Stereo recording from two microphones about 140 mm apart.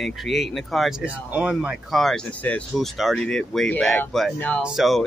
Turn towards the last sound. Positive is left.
turn(degrees=0)  # may be behind; listen again after turning